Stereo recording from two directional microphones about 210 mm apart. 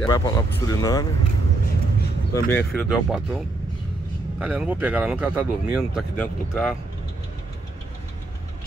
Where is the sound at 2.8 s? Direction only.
Centre (ahead or behind).